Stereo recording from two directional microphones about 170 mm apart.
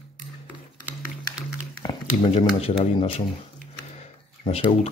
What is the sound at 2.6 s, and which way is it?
Speech, 35° left (ahead or behind).